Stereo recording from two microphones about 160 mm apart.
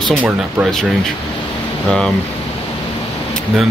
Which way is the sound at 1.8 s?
5° left (ahead or behind).